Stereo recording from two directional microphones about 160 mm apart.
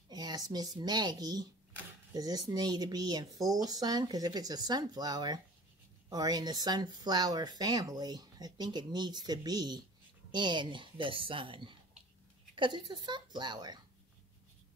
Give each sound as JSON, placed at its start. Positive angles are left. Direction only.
{"t": 0.1, "sound": "speech", "side_deg": -25}